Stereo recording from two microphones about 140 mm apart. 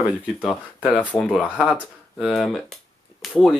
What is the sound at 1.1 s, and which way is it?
Speech, 10° left (ahead or behind).